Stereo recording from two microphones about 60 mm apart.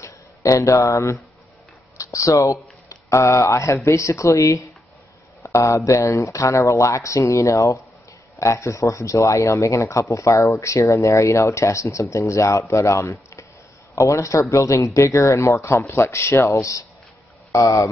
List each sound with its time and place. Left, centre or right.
0.0 s speech: left
17.5 s speech: left